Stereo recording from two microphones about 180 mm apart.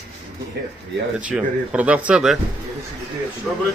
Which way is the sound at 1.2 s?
5° right (ahead or behind).